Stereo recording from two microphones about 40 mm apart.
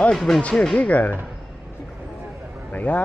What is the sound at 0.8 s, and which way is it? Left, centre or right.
Speech, left.